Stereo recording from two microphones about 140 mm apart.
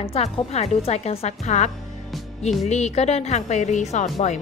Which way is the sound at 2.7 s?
50° left (ahead or behind).